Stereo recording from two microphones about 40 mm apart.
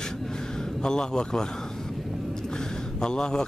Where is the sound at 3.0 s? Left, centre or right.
Centre.